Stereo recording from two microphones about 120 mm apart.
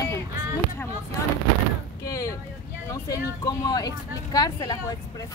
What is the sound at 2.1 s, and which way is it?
Speech, 30° left (ahead or behind).